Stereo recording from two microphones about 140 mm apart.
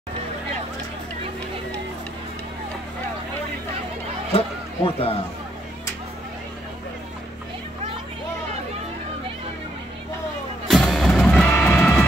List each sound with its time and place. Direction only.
4.3 s music: 45° left (ahead or behind)
10.7 s music: centre (ahead or behind)